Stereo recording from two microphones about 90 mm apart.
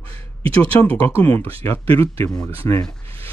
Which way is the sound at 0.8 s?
20° left (ahead or behind).